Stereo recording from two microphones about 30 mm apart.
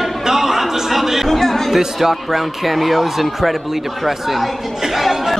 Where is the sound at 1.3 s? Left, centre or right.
Centre.